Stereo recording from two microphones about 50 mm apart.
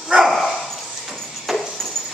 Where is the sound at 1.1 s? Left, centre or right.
Centre.